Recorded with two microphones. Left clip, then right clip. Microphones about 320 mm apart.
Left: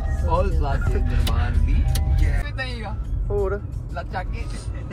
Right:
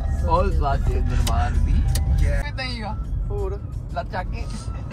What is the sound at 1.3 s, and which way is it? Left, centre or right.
Vehicle, right.